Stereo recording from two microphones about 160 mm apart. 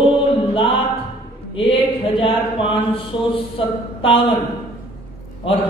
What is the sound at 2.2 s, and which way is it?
Speech, 35° left (ahead or behind).